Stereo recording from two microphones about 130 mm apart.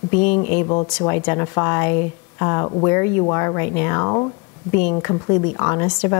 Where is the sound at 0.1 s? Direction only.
15° left (ahead or behind).